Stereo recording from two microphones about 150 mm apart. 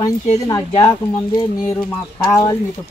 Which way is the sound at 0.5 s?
30° left (ahead or behind).